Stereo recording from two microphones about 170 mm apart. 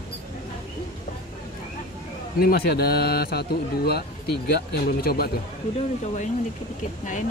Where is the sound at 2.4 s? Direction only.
65° left (ahead or behind).